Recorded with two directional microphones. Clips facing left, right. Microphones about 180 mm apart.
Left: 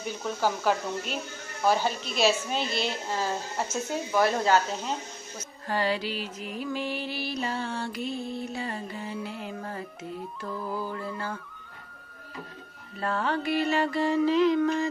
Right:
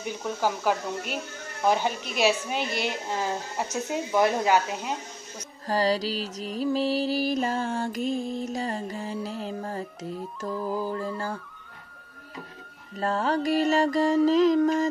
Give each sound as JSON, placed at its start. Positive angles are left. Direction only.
{"t": 0.0, "sound": "speech", "side_deg": -15}
{"t": 5.7, "sound": "music", "side_deg": -35}
{"t": 13.0, "sound": "music", "side_deg": -40}